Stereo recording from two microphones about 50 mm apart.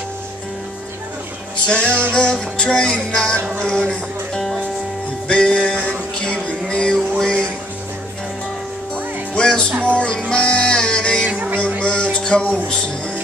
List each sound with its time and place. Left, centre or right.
1.7 s music: left
6.1 s a sound: centre
7.2 s music: centre
9.3 s music: centre
11.2 s a sound: right
11.8 s music: centre